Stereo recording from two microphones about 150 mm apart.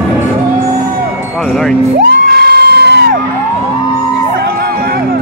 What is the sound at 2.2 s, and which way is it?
Crowd, 90° right.